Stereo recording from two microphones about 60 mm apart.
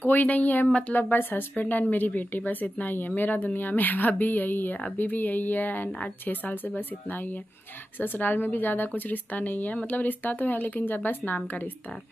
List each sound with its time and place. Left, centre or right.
0.0 s speech: left
0.7 s speech: centre
0.9 s a woman's voice: left